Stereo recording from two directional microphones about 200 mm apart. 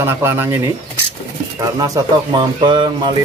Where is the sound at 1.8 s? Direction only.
20° right (ahead or behind).